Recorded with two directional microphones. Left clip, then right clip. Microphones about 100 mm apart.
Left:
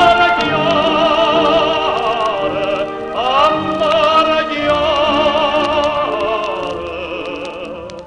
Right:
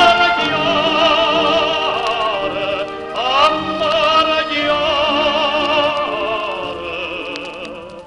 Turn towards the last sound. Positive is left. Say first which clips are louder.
# left 2 dB
turn(degrees=-35)  # may be behind; listen again after turning